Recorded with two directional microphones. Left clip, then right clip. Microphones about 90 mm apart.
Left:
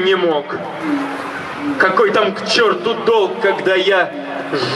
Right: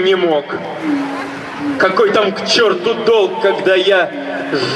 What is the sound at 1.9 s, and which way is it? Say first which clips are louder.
A man's voice: right 1 dB; 20° left (ahead or behind).